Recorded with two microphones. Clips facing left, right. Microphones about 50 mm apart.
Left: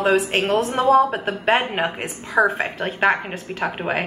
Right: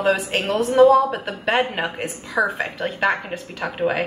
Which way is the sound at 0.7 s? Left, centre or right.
Left.